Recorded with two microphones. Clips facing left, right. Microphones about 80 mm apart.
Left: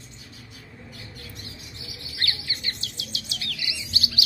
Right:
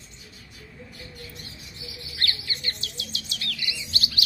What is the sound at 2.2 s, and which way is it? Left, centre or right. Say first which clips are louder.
Bird: even; centre.